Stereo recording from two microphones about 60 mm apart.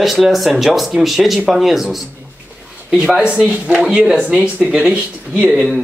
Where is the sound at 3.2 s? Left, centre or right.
Centre.